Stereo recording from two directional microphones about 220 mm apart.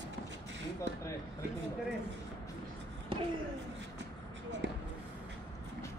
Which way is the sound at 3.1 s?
25° right (ahead or behind).